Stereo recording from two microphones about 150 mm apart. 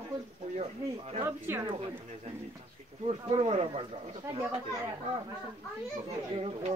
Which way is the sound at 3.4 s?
45° right (ahead or behind).